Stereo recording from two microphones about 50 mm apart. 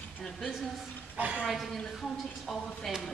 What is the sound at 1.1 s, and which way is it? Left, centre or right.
Speech, right.